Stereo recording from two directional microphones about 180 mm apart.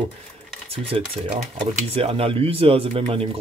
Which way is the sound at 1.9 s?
30° right (ahead or behind).